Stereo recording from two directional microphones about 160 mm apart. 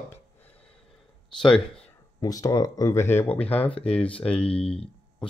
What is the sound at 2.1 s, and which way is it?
Speech, 20° left (ahead or behind).